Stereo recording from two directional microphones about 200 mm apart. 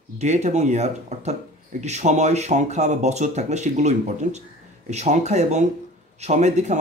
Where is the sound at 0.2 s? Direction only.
35° right (ahead or behind).